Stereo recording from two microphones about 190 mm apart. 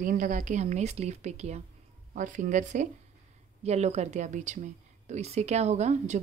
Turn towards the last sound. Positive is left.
turn(degrees=-35)  # may be behind; listen again after turning